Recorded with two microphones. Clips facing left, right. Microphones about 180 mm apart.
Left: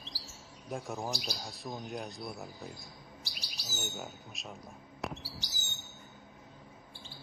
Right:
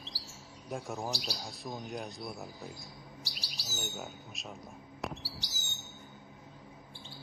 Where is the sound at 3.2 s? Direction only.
15° left (ahead or behind).